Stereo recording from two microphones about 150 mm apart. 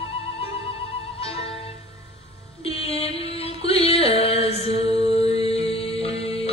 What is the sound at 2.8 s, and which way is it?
Music, 40° left (ahead or behind).